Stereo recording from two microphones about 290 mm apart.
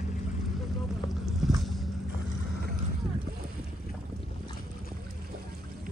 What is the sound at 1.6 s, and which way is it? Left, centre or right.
Vehicle, centre.